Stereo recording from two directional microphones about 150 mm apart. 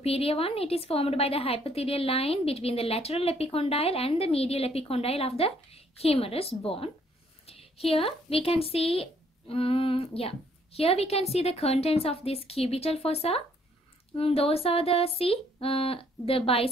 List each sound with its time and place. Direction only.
0.0 s a woman's voice: 40° left (ahead or behind)